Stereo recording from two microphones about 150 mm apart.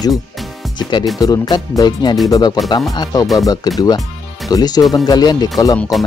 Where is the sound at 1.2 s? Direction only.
25° left (ahead or behind).